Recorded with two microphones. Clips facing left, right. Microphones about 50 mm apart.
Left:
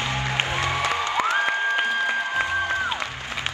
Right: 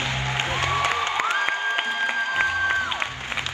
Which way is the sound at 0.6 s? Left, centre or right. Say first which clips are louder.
Right 3 dB; right.